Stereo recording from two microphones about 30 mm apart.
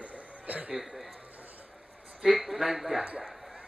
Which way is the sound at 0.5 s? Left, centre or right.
Right.